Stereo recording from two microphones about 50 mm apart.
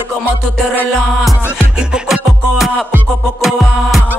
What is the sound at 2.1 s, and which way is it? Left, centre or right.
Music, centre.